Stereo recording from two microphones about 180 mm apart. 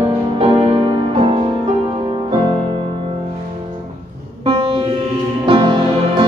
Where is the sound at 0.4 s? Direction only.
35° right (ahead or behind).